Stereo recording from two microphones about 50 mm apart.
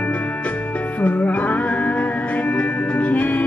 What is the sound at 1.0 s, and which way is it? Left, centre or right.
Music, left.